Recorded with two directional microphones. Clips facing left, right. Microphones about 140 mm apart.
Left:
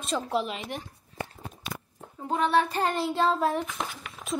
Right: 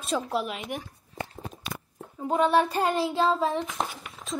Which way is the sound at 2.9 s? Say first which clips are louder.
Right 1 dB; centre (ahead or behind).